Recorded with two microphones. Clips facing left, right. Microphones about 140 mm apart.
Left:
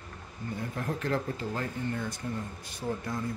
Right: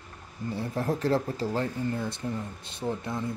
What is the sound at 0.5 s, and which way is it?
Speech, 35° right (ahead or behind).